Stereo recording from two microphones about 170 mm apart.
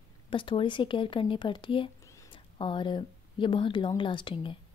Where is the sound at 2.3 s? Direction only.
30° left (ahead or behind).